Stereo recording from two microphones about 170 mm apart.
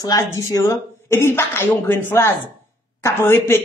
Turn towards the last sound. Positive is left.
turn(degrees=15)  # may be behind; listen again after turning